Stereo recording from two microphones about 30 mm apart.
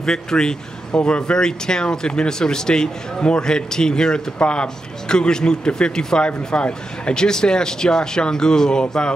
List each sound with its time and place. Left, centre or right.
0.0 s speech: left
4.4 s speech: left
6.2 s speech: left
7.2 s speech: left